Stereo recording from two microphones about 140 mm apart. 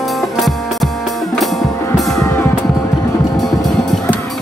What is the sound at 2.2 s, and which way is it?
Music, 20° left (ahead or behind).